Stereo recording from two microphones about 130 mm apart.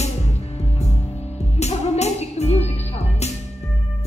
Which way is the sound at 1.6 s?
55° left (ahead or behind).